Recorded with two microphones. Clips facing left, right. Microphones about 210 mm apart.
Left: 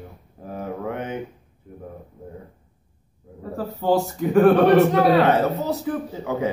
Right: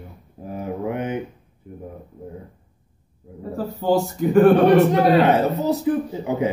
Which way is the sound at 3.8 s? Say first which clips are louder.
Right 1 dB; centre (ahead or behind).